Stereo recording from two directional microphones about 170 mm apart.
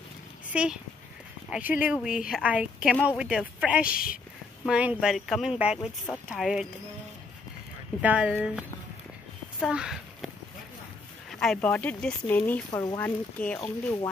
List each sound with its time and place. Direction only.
0.5 s speech: 5° right (ahead or behind)
3.9 s a woman's voice: 55° left (ahead or behind)
4.6 s speech: 5° right (ahead or behind)
8.0 s speech: 5° right (ahead or behind)
9.6 s a sound: 5° right (ahead or behind)
11.3 s speech: 5° left (ahead or behind)